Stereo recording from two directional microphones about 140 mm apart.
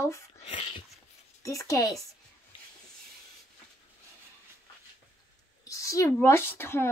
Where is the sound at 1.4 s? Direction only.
25° left (ahead or behind).